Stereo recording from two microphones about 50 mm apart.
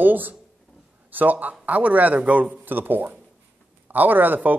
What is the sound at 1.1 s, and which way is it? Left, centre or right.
A man's voice, right.